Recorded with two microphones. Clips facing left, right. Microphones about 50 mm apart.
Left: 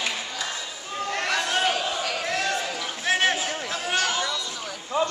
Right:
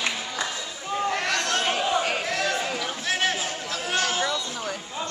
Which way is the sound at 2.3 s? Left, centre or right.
Centre.